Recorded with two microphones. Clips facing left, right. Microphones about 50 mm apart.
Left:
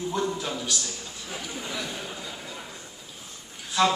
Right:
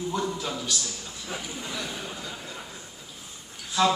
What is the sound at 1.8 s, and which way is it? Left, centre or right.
Speech, centre.